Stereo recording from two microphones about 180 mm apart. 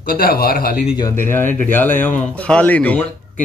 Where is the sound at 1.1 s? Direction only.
10° left (ahead or behind).